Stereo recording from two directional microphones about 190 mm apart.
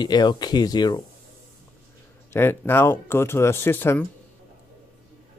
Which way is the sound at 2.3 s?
10° left (ahead or behind).